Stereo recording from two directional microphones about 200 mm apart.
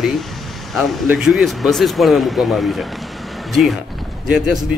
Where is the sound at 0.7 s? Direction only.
Centre (ahead or behind).